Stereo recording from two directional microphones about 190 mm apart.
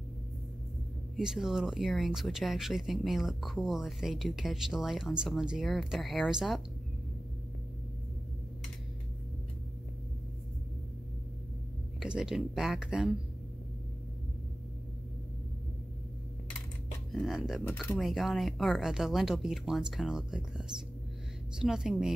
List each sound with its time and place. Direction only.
1.1 s speech: centre (ahead or behind)
12.0 s speech: 5° right (ahead or behind)
17.1 s speech: centre (ahead or behind)